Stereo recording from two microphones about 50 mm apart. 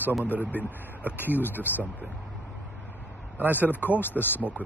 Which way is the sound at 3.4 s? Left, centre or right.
Left.